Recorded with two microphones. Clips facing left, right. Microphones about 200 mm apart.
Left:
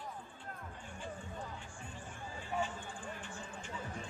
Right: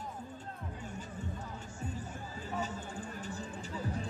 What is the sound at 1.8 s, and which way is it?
Music, 40° right (ahead or behind).